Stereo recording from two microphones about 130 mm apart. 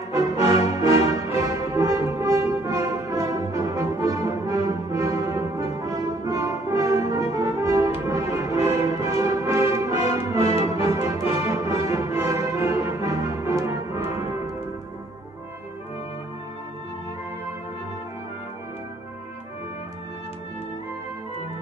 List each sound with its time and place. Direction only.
0.1 s music: 25° right (ahead or behind)
1.4 s brass instrument: 25° right (ahead or behind)
8.1 s music: 25° right (ahead or behind)
10.3 s music: 50° left (ahead or behind)
10.6 s music: 25° right (ahead or behind)